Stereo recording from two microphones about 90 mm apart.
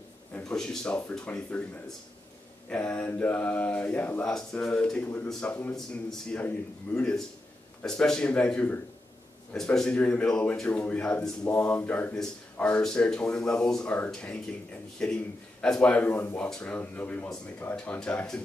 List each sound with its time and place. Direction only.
0.4 s a man's voice: 10° left (ahead or behind)
2.7 s a man's voice: 10° left (ahead or behind)